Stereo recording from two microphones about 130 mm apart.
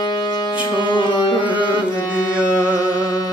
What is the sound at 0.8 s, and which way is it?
Music, 35° left (ahead or behind).